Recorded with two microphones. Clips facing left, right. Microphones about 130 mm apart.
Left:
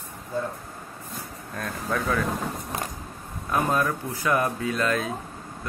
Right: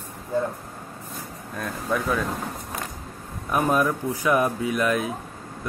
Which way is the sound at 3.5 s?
15° right (ahead or behind).